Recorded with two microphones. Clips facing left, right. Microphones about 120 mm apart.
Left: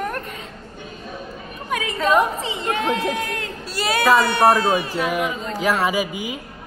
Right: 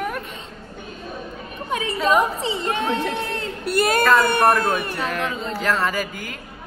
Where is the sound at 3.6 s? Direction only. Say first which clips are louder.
Right 1 dB; 50° right (ahead or behind).